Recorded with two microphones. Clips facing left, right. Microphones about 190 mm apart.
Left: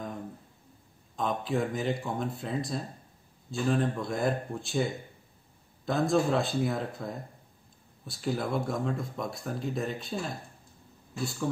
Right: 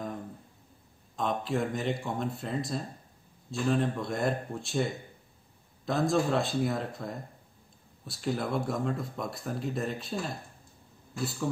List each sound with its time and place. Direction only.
1.1 s speech: centre (ahead or behind)